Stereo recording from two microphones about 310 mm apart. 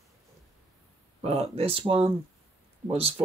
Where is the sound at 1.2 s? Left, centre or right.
Right.